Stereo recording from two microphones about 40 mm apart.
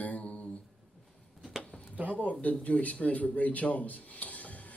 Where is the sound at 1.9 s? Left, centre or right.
Right.